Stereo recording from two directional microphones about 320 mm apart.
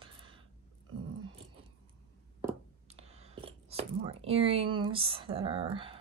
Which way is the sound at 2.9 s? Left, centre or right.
Centre.